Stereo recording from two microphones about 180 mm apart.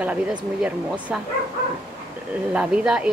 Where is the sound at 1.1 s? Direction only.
5° right (ahead or behind).